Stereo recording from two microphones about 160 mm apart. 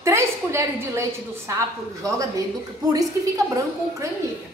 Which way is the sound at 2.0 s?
20° right (ahead or behind).